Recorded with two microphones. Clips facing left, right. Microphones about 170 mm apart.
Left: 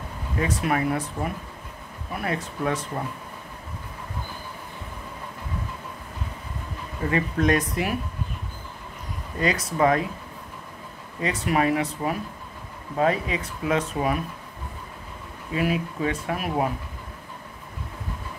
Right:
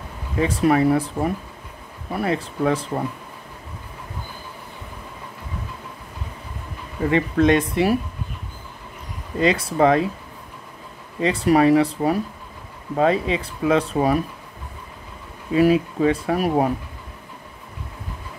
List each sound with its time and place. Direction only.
0.4 s speech: 30° right (ahead or behind)
7.1 s speech: 25° right (ahead or behind)
9.4 s speech: 25° right (ahead or behind)
11.1 s speech: 30° right (ahead or behind)
15.5 s speech: 35° right (ahead or behind)